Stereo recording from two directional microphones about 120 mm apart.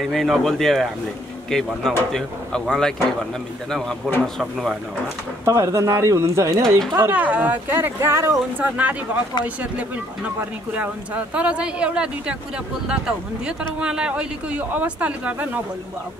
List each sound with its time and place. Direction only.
0.0 s speech: centre (ahead or behind)
5.4 s speech: 25° right (ahead or behind)